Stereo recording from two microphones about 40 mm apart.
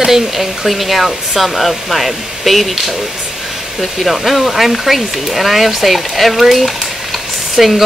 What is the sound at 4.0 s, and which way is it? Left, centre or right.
Speech, centre.